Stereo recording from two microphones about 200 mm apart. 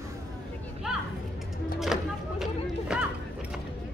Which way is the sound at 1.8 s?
Centre (ahead or behind).